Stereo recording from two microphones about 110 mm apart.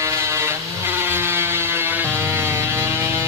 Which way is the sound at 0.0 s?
25° right (ahead or behind).